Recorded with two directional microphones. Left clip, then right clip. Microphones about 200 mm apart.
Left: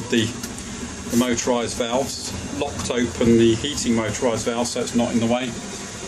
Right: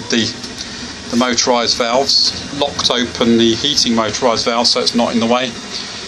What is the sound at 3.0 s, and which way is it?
Speech, centre (ahead or behind).